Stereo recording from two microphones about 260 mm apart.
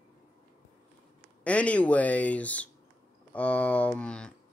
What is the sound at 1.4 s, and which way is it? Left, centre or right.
Speech, centre.